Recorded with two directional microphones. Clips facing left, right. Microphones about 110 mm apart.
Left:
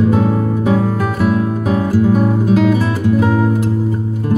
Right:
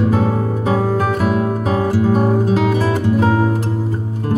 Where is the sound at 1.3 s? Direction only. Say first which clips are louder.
Left 1 dB; 35° right (ahead or behind).